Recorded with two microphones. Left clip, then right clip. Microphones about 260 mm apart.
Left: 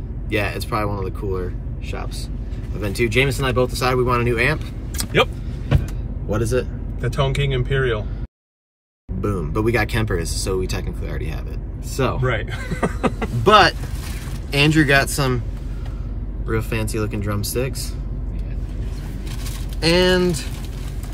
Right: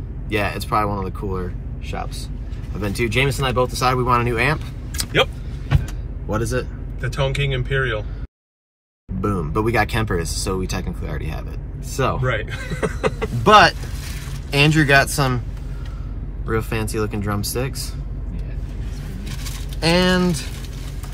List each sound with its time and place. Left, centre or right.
0.3 s speech: centre
4.9 s vehicle: left
6.3 s a man's voice: centre
7.0 s speech: centre
9.2 s speech: centre
12.3 s a man's voice: left
13.4 s speech: centre
16.4 s speech: centre
19.8 s speech: centre